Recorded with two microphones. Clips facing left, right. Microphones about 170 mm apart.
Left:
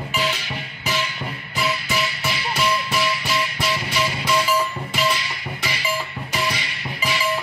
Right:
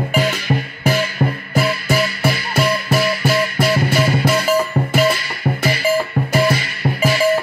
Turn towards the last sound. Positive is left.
turn(degrees=-50)  # may be behind; listen again after turning